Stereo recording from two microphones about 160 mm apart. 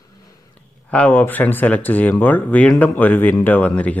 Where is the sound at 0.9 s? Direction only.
10° left (ahead or behind).